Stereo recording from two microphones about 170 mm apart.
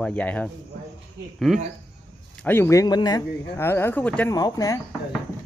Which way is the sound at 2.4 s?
15° left (ahead or behind).